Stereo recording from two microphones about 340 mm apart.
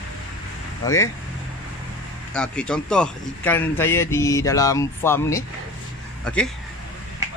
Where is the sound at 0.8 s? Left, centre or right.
Centre.